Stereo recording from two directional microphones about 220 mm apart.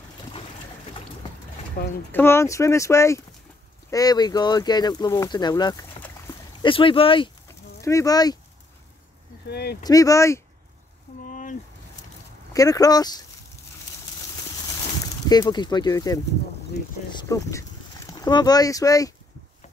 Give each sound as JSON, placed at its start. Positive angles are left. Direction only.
{"t": 1.8, "sound": "speech", "side_deg": 45}
{"t": 2.1, "sound": "speech", "side_deg": 10}
{"t": 9.5, "sound": "speech", "side_deg": 45}
{"t": 9.8, "sound": "speech", "side_deg": 15}
{"t": 11.2, "sound": "a sound", "side_deg": 35}
{"t": 12.5, "sound": "speech", "side_deg": 15}
{"t": 15.2, "sound": "speech", "side_deg": 20}